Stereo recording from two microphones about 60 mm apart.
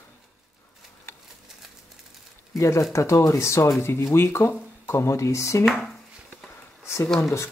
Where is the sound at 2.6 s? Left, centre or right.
Left.